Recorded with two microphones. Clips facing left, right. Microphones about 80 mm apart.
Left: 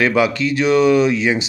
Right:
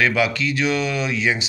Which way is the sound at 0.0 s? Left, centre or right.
Left.